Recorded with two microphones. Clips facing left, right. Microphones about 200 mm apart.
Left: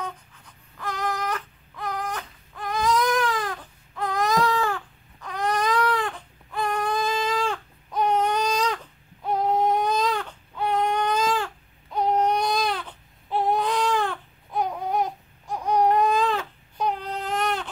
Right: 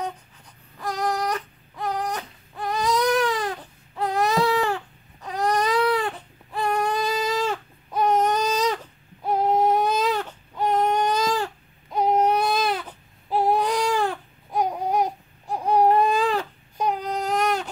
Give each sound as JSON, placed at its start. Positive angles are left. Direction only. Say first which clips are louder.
{"t": 0.7, "sound": "baby cry", "louder": "right 3 dB", "side_deg": -40}
{"t": 4.5, "sound": "baby cry", "louder": "right 2 dB", "side_deg": -10}
{"t": 4.7, "sound": "baby cry", "louder": "right 3 dB", "side_deg": -35}
{"t": 7.2, "sound": "baby cry", "louder": "right 1 dB", "side_deg": -5}
{"t": 8.1, "sound": "baby cry", "louder": "right 2 dB", "side_deg": -40}
{"t": 8.7, "sound": "baby cry", "louder": "right 3 dB", "side_deg": -10}
{"t": 11.2, "sound": "babbling", "louder": "right 1 dB", "side_deg": -40}
{"t": 11.9, "sound": "baby cry", "louder": "right 2 dB", "side_deg": -10}
{"t": 13.4, "sound": "baby cry", "louder": "right 2 dB", "side_deg": -40}
{"t": 16.1, "sound": "baby cry", "louder": "right 1 dB", "side_deg": -10}
{"t": 16.9, "sound": "baby cry", "louder": "right 4 dB", "side_deg": -40}